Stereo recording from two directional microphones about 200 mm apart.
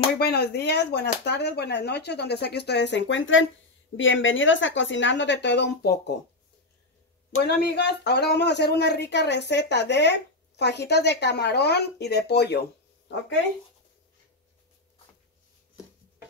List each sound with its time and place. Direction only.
0.2 s a woman's voice: 55° left (ahead or behind)
7.4 s speech: 55° left (ahead or behind)